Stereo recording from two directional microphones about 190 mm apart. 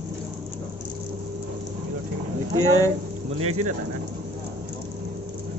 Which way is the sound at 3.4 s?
35° right (ahead or behind).